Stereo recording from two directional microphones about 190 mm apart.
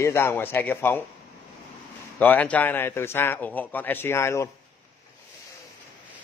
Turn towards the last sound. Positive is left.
turn(degrees=15)  # may be behind; listen again after turning